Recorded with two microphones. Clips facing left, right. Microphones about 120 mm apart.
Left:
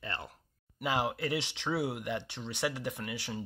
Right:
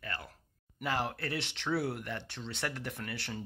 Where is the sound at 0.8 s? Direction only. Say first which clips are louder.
Left 3 dB; 15° left (ahead or behind).